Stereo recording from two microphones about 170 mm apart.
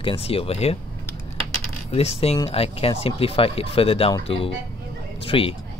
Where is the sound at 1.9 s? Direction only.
35° left (ahead or behind).